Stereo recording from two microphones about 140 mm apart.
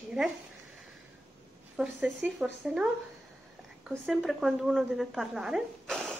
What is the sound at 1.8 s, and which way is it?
Speech, centre (ahead or behind).